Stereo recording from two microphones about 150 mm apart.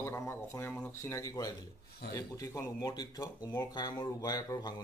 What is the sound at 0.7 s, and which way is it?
A man's voice, 15° left (ahead or behind).